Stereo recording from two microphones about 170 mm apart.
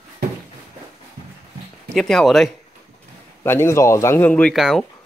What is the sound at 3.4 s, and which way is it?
Speech, 15° left (ahead or behind).